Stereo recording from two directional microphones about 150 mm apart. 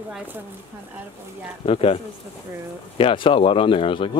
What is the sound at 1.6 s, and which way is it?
Speech, 40° left (ahead or behind).